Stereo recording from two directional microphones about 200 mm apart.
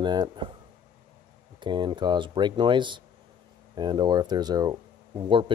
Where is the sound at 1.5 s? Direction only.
25° right (ahead or behind).